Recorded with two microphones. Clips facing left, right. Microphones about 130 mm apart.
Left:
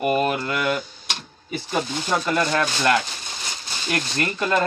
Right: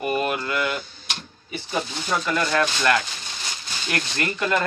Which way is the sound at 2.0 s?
30° left (ahead or behind).